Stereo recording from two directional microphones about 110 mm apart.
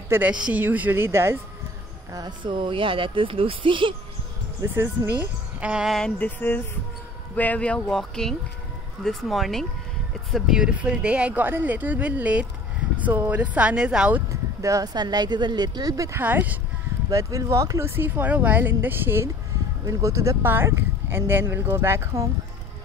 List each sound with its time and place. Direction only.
0.1 s speech: 10° right (ahead or behind)
2.1 s speech: 45° right (ahead or behind)
4.7 s a woman's voice: 20° right (ahead or behind)
5.9 s speech: 10° left (ahead or behind); by 14.2 s 10° right (ahead or behind)
14.3 s speech: 30° right (ahead or behind)
16.2 s speech: 15° right (ahead or behind)
17.1 s speech: 30° right (ahead or behind)